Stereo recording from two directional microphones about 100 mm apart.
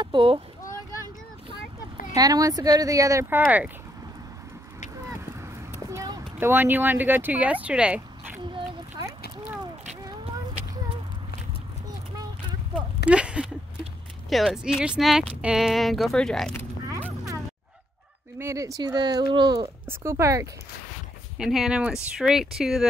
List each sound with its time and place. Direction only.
0.0 s a child's voice: 55° right (ahead or behind)
2.1 s speech: 40° right (ahead or behind)
3.3 s speech: 20° right (ahead or behind)
6.4 s speech: 20° right (ahead or behind)
13.1 s speech: 10° right (ahead or behind); by 16.5 s 5° left (ahead or behind)
18.4 s speech: 30° right (ahead or behind)
20.0 s speech: 30° right (ahead or behind)
21.4 s speech: 5° right (ahead or behind)